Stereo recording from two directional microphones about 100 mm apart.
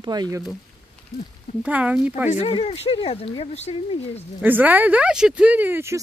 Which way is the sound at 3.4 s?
90° left.